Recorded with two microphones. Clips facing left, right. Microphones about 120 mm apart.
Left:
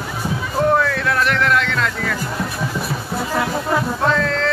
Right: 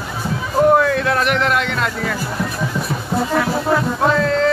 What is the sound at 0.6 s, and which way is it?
Music, 15° right (ahead or behind).